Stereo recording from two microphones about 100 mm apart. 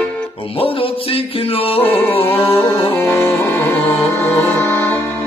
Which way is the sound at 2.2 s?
80° left.